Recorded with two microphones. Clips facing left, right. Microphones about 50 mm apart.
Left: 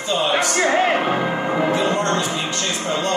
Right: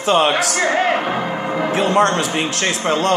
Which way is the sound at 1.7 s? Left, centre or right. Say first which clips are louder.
Right 4 dB; right.